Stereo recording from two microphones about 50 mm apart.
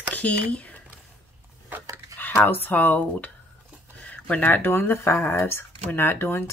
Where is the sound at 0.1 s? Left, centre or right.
Left.